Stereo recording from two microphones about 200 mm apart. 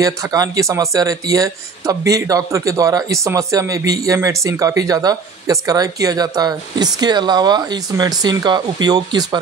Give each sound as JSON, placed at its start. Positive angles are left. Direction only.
{"t": 0.0, "sound": "speech", "side_deg": -20}